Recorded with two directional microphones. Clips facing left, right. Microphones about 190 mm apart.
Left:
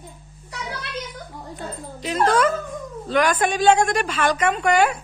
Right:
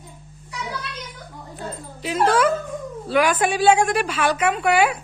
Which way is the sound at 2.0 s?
5° right (ahead or behind).